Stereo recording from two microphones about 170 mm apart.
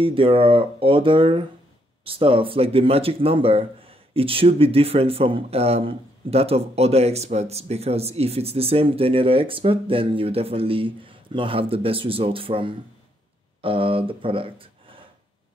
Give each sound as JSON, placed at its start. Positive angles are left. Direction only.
{"t": 0.0, "sound": "speech", "side_deg": -30}